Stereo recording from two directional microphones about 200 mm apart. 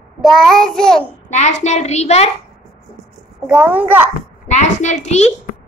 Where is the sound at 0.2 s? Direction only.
Centre (ahead or behind).